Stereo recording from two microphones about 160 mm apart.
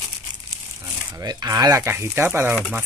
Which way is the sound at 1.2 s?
25° right (ahead or behind).